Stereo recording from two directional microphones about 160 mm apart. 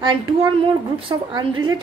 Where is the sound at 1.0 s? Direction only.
30° right (ahead or behind).